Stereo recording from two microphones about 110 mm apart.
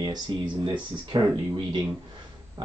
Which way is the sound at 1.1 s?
45° right (ahead or behind).